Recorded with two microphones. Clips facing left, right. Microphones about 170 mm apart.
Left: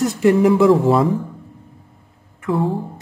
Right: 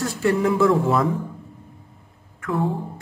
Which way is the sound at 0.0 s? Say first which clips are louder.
Left 6 dB; 20° left (ahead or behind).